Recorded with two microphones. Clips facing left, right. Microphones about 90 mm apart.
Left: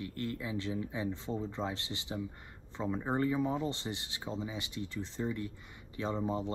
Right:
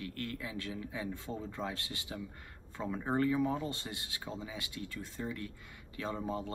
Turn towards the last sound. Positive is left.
turn(degrees=25)  # may be behind; listen again after turning